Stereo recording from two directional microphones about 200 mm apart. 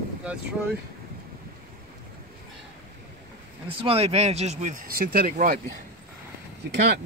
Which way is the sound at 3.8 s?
30° right (ahead or behind).